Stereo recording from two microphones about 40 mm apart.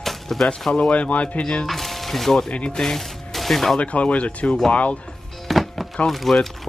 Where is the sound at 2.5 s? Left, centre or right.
Left.